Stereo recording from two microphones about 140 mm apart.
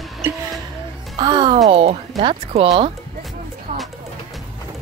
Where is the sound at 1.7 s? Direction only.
45° right (ahead or behind).